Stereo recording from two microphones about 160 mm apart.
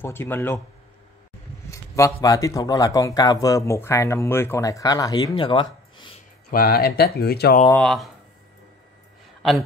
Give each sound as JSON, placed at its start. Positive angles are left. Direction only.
{"t": 0.0, "sound": "speech", "side_deg": 15}
{"t": 1.7, "sound": "speech", "side_deg": 20}
{"t": 5.3, "sound": "a sound", "side_deg": 30}
{"t": 6.5, "sound": "speech", "side_deg": 70}
{"t": 7.7, "sound": "speech", "side_deg": 5}